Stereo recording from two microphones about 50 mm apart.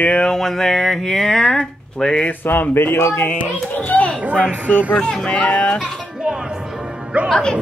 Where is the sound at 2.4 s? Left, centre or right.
Left.